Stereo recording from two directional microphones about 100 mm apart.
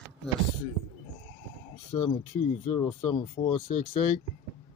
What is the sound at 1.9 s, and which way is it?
Speech, 45° left (ahead or behind).